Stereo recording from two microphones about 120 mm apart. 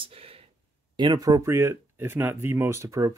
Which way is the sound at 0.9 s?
35° right (ahead or behind).